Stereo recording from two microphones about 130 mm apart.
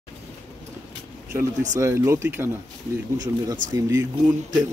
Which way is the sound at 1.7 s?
25° right (ahead or behind).